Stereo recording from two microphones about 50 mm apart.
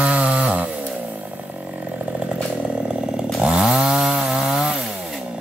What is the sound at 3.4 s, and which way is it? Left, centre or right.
Chainsaw, centre.